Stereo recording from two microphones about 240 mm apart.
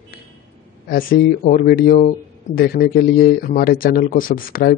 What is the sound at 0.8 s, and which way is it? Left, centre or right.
Speech, left.